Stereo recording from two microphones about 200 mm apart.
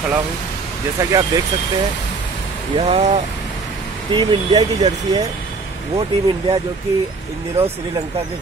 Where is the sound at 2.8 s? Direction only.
30° right (ahead or behind).